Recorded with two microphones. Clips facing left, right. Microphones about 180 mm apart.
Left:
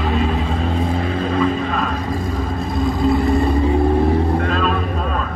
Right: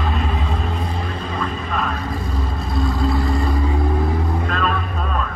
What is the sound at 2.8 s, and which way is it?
Vehicle, 20° left (ahead or behind).